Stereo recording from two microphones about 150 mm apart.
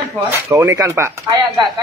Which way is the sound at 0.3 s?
15° right (ahead or behind).